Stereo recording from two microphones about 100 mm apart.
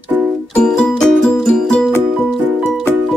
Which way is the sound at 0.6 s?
5° left (ahead or behind).